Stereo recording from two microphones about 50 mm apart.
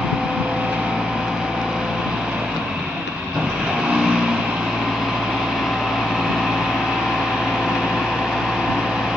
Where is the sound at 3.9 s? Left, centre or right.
Centre.